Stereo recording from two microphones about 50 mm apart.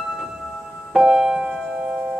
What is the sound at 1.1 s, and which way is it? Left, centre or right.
Music, centre.